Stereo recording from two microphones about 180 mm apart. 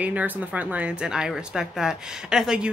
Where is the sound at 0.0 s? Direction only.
10° right (ahead or behind).